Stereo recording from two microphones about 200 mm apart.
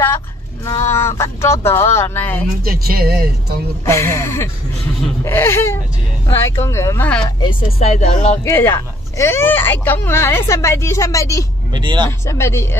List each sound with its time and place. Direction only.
0.7 s speech: 15° left (ahead or behind)
2.6 s speech: 50° right (ahead or behind)
3.8 s speech: 10° left (ahead or behind)
7.2 s a woman's voice: 20° left (ahead or behind)
7.8 s speech: 30° left (ahead or behind)
8.5 s speech: 10° left (ahead or behind)
11.7 s speech: 20° right (ahead or behind)
12.3 s speech: 15° left (ahead or behind)